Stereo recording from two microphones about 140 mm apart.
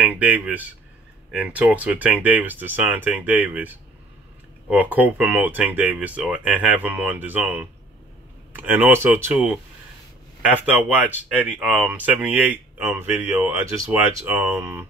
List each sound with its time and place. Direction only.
0.0 s speech: 10° right (ahead or behind)